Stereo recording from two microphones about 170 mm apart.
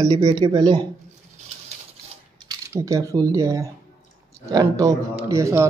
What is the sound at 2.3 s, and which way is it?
Speech, 20° right (ahead or behind).